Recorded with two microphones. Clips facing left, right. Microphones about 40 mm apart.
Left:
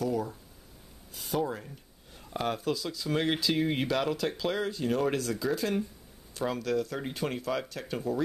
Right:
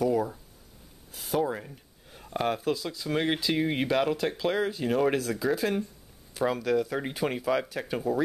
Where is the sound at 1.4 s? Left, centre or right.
Centre.